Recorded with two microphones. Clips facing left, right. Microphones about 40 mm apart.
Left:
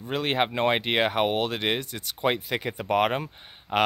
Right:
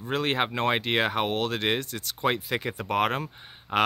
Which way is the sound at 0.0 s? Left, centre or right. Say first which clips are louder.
Left 1 dB; centre.